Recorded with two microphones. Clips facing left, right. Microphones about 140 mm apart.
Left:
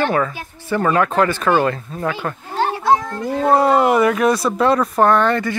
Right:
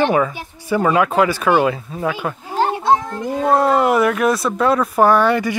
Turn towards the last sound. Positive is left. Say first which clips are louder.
# right 1 dB
turn(degrees=-10)  # may be behind; listen again after turning